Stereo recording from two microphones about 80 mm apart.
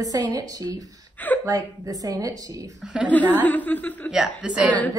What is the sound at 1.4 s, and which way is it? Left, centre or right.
Speech, right.